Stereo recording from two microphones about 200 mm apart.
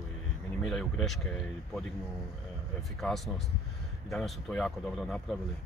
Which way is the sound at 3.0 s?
Centre (ahead or behind).